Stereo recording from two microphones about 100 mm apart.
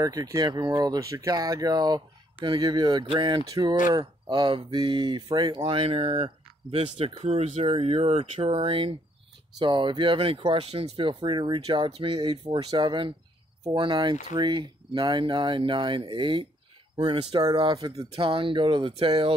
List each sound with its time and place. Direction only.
0.0 s speech: 40° right (ahead or behind); by 8.9 s 60° right (ahead or behind)
9.6 s speech: 50° right (ahead or behind)
12.2 s speech: 50° right (ahead or behind)
18.1 s speech: 60° right (ahead or behind)